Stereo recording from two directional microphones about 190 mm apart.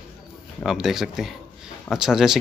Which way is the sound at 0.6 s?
Centre (ahead or behind).